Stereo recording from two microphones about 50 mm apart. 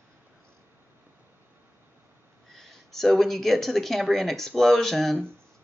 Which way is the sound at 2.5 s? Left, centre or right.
Centre.